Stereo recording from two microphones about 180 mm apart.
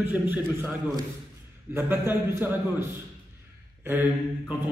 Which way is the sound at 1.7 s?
15° right (ahead or behind).